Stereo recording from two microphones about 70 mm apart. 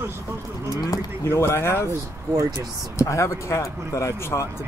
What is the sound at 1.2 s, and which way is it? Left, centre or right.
Speech, left.